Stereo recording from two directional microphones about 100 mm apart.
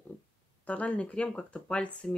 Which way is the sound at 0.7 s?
15° left (ahead or behind).